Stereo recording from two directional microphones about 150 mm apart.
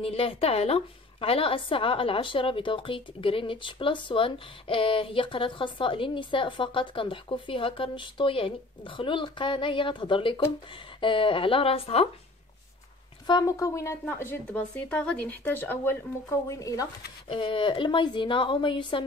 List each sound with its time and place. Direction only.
0.0 s a woman's voice: 40° left (ahead or behind)
13.3 s a woman's voice: 25° left (ahead or behind)
17.3 s a woman's voice: 35° left (ahead or behind)